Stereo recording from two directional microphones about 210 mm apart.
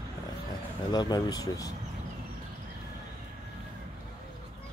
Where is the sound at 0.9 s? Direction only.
20° left (ahead or behind).